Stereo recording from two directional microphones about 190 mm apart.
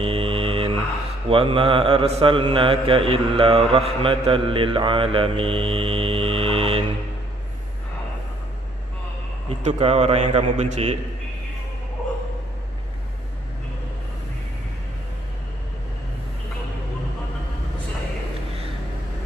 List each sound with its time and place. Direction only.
0.0 s mantra: 30° right (ahead or behind)
9.6 s a man's voice: 35° right (ahead or behind)